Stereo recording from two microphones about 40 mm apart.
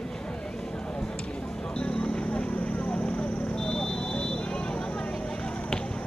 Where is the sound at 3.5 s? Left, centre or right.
Centre.